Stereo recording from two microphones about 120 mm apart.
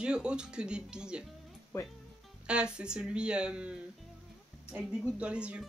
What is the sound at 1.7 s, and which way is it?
Speech, 25° left (ahead or behind).